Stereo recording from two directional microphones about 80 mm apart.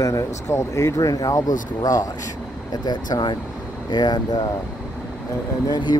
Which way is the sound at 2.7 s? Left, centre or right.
Left.